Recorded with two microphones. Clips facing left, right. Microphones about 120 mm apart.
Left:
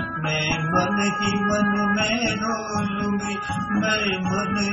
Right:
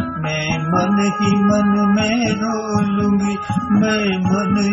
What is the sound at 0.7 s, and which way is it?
Music, 45° right (ahead or behind).